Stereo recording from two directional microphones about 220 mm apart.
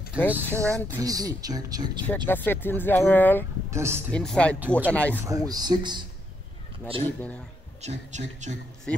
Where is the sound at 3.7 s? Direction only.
10° right (ahead or behind).